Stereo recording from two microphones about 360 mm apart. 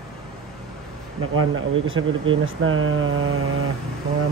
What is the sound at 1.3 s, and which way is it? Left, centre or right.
Speech, right.